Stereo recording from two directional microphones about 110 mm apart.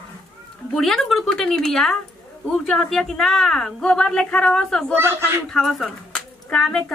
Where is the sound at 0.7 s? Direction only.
5° left (ahead or behind).